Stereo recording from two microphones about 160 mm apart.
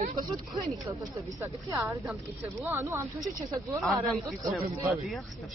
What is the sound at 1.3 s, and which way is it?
Speech, 20° right (ahead or behind).